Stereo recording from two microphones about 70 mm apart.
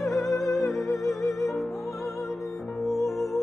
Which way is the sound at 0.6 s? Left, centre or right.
Left.